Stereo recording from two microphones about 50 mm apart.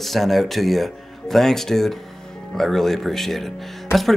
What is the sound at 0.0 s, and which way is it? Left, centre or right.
Speech, centre.